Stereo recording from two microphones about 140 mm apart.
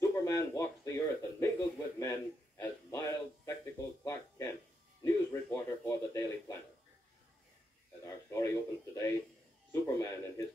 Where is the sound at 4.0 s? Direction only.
20° left (ahead or behind).